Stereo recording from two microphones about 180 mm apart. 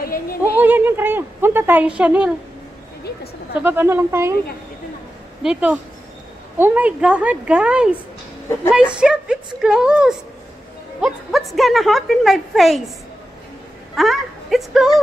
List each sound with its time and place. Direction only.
0.0 s speech: 55° left (ahead or behind)
0.6 s speech: 10° right (ahead or behind)
3.6 s speech: 10° right (ahead or behind)
5.4 s a woman's voice: 5° right (ahead or behind)
9.0 s a woman's voice: 5° right (ahead or behind)
13.9 s speech: centre (ahead or behind)